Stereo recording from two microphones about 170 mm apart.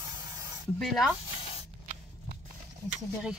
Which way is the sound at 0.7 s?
Centre (ahead or behind).